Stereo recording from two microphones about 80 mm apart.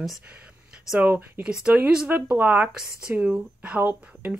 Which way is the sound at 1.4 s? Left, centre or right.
Centre.